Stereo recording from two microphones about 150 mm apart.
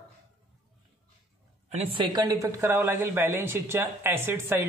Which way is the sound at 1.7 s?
45° right (ahead or behind).